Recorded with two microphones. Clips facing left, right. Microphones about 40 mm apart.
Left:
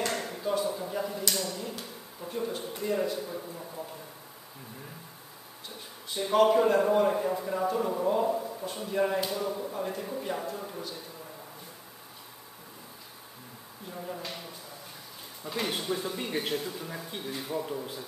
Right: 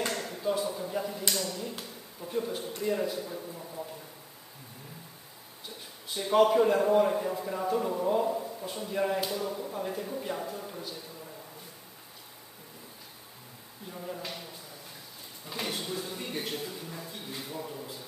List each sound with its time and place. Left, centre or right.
0.1 s a sound: centre
1.3 s a man's voice: centre
6.0 s a man's voice: centre
13.8 s a man's voice: centre